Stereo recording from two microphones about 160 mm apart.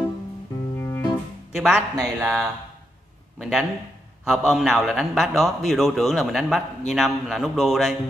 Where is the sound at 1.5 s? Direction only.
Centre (ahead or behind).